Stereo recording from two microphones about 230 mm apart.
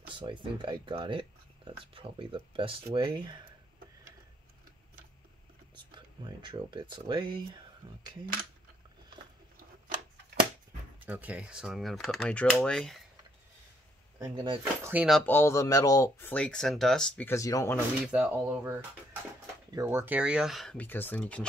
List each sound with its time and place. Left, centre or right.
0.2 s speech: right
5.8 s speech: centre
11.1 s speech: centre
14.2 s speech: centre
14.9 s speech: centre
18.0 s speech: centre